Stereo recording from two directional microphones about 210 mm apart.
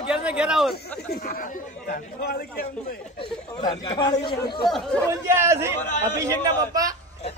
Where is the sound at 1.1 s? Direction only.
45° left (ahead or behind).